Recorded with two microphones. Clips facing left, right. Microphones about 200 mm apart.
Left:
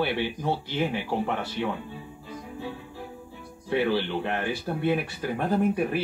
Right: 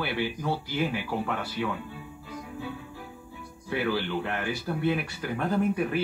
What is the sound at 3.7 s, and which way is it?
Speech, 20° left (ahead or behind).